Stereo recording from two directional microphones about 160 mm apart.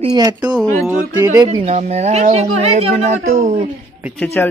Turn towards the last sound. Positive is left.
turn(degrees=5)  # may be behind; listen again after turning